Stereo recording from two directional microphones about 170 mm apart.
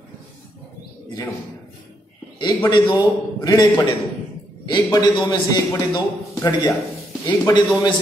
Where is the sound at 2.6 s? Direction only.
25° left (ahead or behind).